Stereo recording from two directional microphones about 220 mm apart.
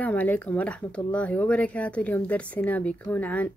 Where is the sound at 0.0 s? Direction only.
5° left (ahead or behind).